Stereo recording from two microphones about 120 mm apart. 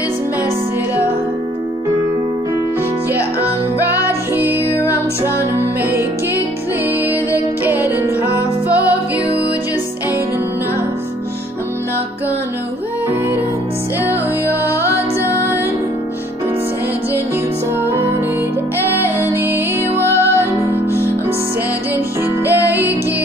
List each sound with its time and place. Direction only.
7.1 s music: 15° right (ahead or behind)
15.2 s music: 20° right (ahead or behind)
19.0 s music: 20° right (ahead or behind)
22.4 s music: 15° right (ahead or behind)